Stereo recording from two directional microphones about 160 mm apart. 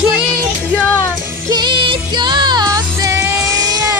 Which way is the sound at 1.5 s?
30° right (ahead or behind).